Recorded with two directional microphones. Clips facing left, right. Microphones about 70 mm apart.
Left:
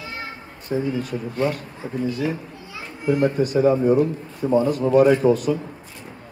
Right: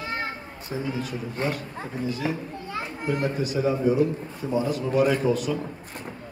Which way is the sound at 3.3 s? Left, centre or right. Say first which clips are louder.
Left 7 dB; left.